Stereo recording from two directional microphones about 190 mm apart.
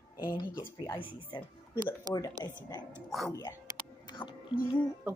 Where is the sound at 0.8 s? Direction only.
25° left (ahead or behind).